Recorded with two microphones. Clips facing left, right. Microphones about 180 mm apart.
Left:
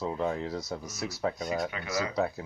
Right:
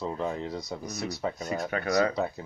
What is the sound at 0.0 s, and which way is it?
Speech, 5° left (ahead or behind).